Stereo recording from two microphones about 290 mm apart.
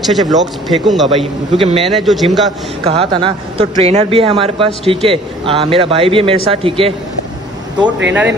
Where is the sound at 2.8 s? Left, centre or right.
Centre.